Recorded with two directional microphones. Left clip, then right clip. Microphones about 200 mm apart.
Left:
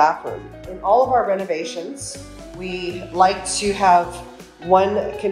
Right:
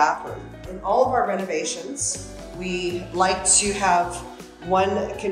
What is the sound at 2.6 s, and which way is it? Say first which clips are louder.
Speech: even; 15° right (ahead or behind).